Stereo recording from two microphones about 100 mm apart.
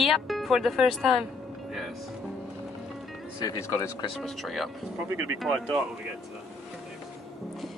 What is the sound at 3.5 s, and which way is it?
Speech, 25° left (ahead or behind).